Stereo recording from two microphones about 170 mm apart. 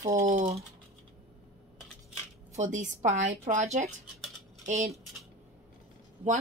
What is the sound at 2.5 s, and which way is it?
A woman's voice, 45° right (ahead or behind).